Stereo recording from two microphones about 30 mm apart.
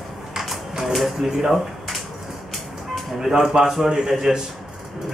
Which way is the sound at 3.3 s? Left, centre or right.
Centre.